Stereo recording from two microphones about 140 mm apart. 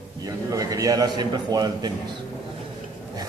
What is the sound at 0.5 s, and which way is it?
A man's voice, 25° right (ahead or behind).